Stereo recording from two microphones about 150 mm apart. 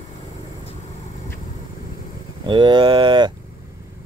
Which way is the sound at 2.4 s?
30° right (ahead or behind).